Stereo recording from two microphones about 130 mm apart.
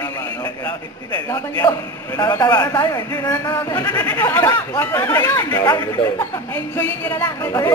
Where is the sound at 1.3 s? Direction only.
25° left (ahead or behind).